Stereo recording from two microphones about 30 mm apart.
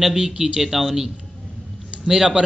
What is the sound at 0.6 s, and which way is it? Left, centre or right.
Speech, centre.